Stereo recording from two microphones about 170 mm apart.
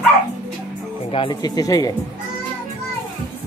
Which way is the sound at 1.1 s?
30° left (ahead or behind).